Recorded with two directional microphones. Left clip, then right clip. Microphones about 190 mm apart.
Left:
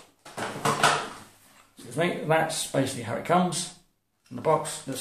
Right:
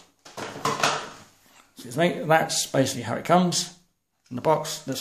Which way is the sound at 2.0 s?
45° right (ahead or behind).